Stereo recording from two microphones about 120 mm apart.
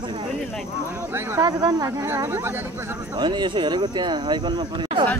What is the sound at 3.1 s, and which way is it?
Speech, 40° right (ahead or behind).